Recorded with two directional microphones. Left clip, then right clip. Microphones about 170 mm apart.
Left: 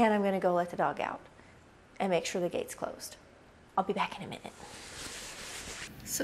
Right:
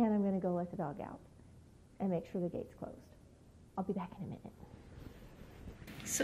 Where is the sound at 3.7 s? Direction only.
15° left (ahead or behind).